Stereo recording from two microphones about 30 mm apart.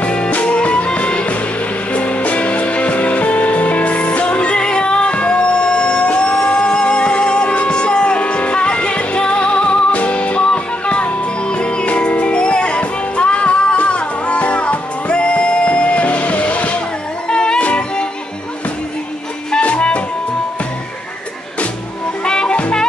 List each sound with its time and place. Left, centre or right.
0.0 s music: left
11.8 s music: left
17.3 s music: left
17.6 s music: left
19.6 s music: left
22.2 s music: left